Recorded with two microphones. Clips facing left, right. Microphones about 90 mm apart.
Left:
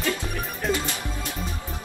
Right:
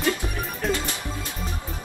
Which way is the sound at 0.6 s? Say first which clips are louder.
Even; centre (ahead or behind).